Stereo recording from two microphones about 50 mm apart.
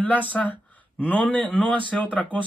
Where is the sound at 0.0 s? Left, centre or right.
Left.